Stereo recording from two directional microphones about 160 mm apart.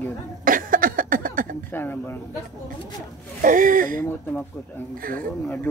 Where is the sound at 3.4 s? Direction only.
55° right (ahead or behind).